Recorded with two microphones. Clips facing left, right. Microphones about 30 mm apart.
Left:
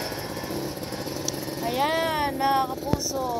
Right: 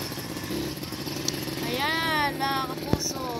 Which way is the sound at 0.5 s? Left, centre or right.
Right.